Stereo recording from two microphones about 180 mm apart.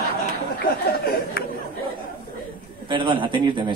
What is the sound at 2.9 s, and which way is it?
Speech, 25° right (ahead or behind).